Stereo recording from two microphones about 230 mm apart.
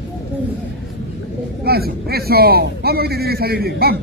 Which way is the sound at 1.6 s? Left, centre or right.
Right.